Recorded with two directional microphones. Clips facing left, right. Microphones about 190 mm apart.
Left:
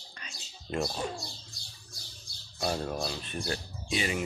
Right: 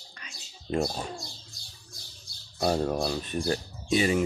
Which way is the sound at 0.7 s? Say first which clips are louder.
Right 4 dB; 35° right (ahead or behind).